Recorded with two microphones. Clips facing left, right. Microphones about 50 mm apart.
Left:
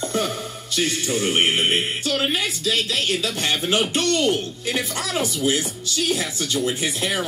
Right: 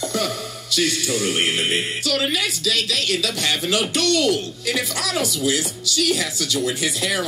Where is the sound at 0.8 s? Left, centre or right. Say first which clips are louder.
Left 1 dB; left.